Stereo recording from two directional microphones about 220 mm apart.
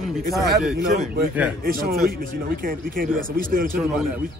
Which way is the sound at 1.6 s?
45° right (ahead or behind).